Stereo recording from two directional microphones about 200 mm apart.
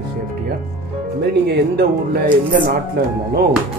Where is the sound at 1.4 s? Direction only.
50° right (ahead or behind).